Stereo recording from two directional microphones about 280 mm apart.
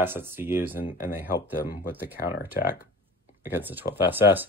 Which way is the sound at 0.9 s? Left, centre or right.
Left.